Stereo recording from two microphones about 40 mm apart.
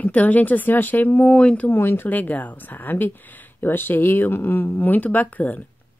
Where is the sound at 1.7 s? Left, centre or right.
Left.